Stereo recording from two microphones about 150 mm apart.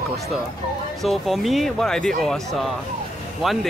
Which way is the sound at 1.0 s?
Centre (ahead or behind).